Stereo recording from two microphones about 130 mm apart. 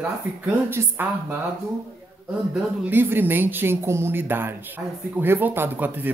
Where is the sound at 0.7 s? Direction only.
15° right (ahead or behind).